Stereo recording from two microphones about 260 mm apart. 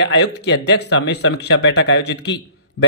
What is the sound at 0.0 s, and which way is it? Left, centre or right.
A man's voice, left.